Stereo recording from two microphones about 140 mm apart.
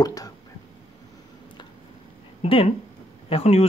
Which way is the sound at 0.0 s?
25° left (ahead or behind).